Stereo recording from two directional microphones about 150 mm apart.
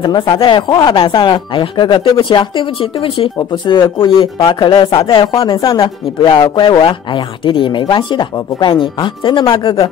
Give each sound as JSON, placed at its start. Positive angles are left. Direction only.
{"t": 0.0, "sound": "speech", "side_deg": 30}